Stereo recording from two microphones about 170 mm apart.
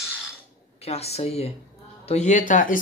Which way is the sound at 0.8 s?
40° left (ahead or behind).